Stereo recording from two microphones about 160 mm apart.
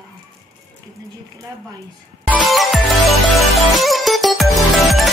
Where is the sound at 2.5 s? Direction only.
Centre (ahead or behind).